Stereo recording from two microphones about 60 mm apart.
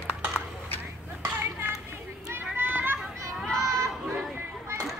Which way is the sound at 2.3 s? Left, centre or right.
Right.